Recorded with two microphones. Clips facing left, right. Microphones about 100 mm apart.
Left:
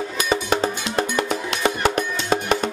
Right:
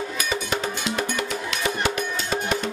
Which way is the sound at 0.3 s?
35° left (ahead or behind).